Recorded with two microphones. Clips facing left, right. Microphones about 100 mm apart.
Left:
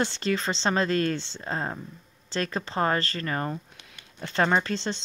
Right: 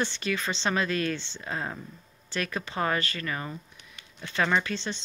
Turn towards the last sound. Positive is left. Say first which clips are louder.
# left 2 dB
turn(degrees=35)  # may be behind; listen again after turning